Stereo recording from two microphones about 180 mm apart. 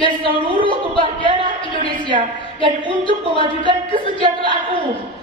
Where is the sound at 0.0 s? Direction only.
30° right (ahead or behind).